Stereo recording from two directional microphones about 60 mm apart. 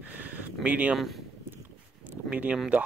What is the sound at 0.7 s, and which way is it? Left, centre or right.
Speech, right.